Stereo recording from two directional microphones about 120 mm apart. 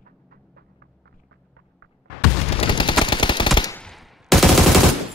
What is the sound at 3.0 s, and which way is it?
Machine gun, 40° left (ahead or behind).